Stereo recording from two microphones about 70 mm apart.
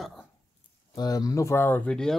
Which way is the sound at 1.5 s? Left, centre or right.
Left.